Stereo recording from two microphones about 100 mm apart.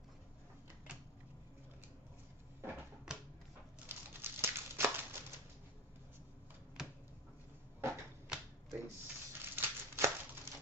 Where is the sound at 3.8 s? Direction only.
25° right (ahead or behind).